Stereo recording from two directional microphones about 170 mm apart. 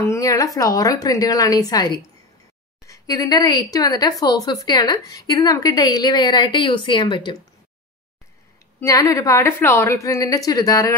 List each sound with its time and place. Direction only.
0.0 s a sound: 20° left (ahead or behind)
0.6 s a woman's voice: 20° left (ahead or behind)
8.7 s a woman's voice: 15° left (ahead or behind)